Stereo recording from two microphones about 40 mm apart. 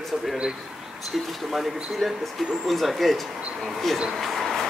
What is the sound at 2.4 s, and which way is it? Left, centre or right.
Speech, centre.